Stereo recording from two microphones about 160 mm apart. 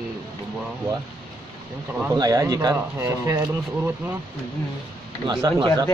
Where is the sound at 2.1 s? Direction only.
25° right (ahead or behind).